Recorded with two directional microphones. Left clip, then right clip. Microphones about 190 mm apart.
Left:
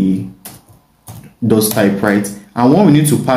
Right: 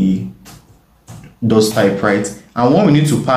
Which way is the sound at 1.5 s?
25° left (ahead or behind).